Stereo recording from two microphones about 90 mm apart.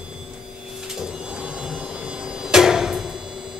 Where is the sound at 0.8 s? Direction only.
10° right (ahead or behind).